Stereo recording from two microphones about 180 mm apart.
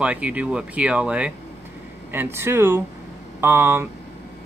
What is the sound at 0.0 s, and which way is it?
Speech, 5° right (ahead or behind).